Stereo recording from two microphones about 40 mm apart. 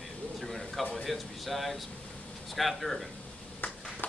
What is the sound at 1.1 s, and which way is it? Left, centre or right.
A man's voice, centre.